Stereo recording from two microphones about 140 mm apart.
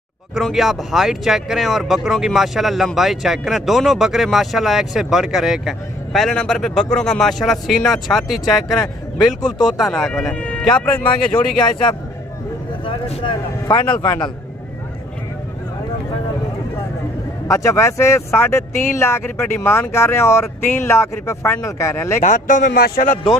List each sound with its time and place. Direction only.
0.3 s speech: centre (ahead or behind)
11.3 s speech: 35° left (ahead or behind)
17.5 s speech: 20° left (ahead or behind)
22.2 s a man's voice: 65° left (ahead or behind)